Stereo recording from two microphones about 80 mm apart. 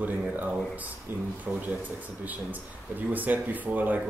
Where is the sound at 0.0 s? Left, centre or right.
Centre.